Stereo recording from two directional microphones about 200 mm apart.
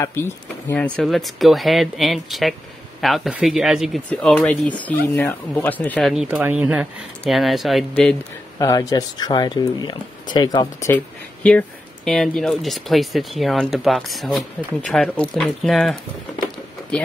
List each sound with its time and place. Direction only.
0.0 s speech: 15° left (ahead or behind)
8.5 s speech: 15° left (ahead or behind)
11.4 s speech: 5° left (ahead or behind)